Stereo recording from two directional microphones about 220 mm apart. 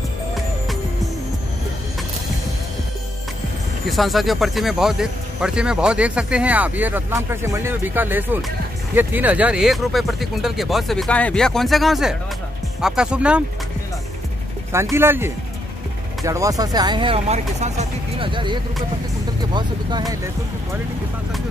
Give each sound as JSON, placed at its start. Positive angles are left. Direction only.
{"t": 3.9, "sound": "speech", "side_deg": 0}
{"t": 14.7, "sound": "speech", "side_deg": -10}